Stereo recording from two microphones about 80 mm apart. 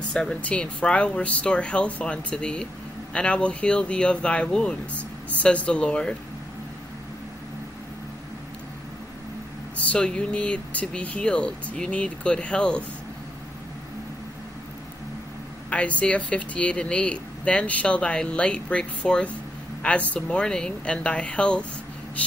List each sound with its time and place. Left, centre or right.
0.1 s speech: centre
9.8 s speech: centre
15.7 s speech: centre